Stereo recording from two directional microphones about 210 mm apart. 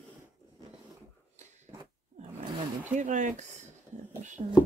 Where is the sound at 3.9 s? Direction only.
35° right (ahead or behind).